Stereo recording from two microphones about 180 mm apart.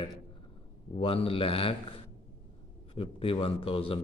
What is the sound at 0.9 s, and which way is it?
A man's voice, 30° left (ahead or behind).